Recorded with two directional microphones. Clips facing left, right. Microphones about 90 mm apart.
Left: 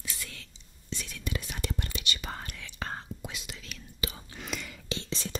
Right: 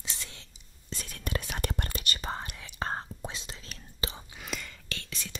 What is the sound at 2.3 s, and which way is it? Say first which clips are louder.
Whispering: right 3 dB; 25° right (ahead or behind).